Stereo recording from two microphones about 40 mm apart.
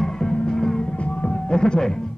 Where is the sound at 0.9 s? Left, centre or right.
Left.